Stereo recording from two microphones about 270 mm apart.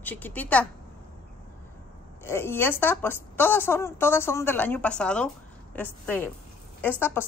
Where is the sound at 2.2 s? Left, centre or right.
Centre.